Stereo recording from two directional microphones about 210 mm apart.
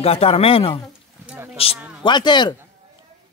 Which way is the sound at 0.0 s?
30° left (ahead or behind).